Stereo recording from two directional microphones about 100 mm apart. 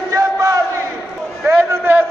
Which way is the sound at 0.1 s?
35° right (ahead or behind).